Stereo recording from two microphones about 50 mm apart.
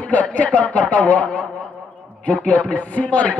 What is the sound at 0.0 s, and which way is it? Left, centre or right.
Speech, left.